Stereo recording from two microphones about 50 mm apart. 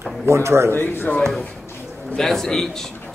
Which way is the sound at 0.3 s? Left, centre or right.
Right.